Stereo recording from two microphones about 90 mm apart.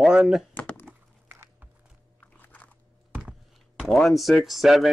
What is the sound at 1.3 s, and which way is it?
Biting, 25° right (ahead or behind).